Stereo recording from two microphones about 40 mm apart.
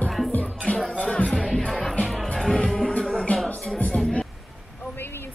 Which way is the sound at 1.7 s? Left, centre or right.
Centre.